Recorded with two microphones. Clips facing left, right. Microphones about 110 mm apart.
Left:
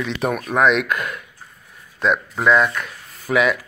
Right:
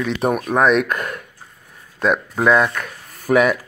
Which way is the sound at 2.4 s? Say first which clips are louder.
Right 1 dB; 45° right (ahead or behind).